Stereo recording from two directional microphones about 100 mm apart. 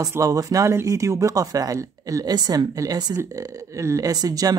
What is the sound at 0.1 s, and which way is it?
Speech, 35° right (ahead or behind).